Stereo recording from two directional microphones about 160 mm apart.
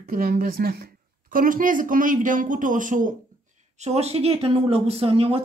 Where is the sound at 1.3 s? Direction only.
60° right (ahead or behind).